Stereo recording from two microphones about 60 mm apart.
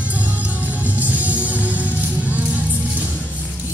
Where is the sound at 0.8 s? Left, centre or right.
Right.